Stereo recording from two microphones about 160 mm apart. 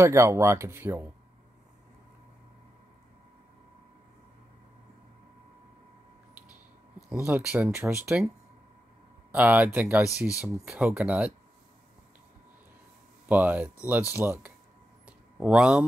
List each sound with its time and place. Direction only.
0.0 s speech: 20° right (ahead or behind)
7.2 s speech: 10° right (ahead or behind)
9.3 s speech: 10° right (ahead or behind)
13.3 s speech: 10° right (ahead or behind)
15.0 s a sound: 5° right (ahead or behind)